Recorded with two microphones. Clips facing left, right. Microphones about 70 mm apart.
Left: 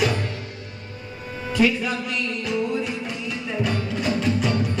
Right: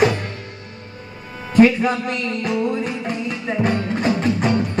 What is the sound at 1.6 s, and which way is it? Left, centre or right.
Music, right.